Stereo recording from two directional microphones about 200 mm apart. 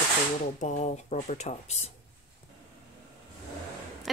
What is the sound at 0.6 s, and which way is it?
Speech, 35° left (ahead or behind).